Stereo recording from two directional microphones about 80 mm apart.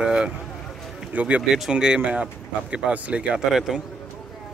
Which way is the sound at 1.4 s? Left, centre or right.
Centre.